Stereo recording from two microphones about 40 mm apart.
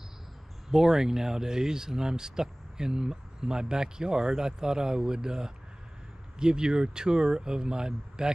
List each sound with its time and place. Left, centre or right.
0.7 s speech: centre